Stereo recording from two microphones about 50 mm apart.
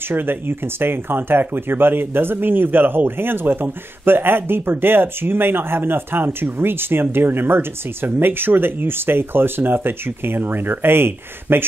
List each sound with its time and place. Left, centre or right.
0.1 s speech: right